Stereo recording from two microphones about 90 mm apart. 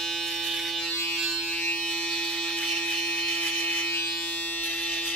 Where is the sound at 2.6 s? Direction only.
5° left (ahead or behind).